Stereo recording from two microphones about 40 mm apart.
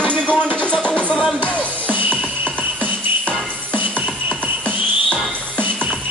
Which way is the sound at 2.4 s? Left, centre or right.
Left.